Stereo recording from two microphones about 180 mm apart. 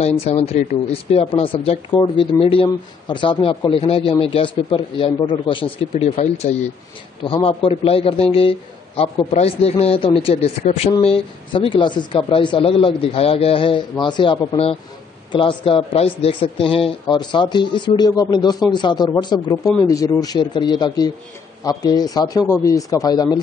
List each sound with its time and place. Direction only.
0.2 s a man's voice: 35° left (ahead or behind)